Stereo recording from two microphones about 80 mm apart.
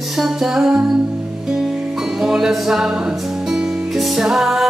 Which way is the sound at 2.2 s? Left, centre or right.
Centre.